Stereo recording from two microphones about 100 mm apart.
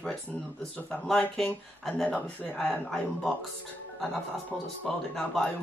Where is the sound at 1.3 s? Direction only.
5° left (ahead or behind).